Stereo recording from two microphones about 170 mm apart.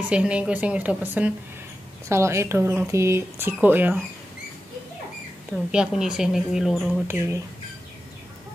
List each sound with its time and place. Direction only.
0.1 s speech: 5° right (ahead or behind)
5.5 s a woman's voice: 5° right (ahead or behind)
7.1 s speech: 15° right (ahead or behind)